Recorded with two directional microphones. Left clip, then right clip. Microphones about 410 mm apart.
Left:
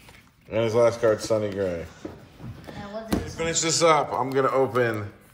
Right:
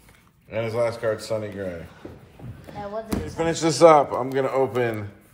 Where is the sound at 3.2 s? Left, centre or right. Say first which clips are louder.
Right 5 dB; centre.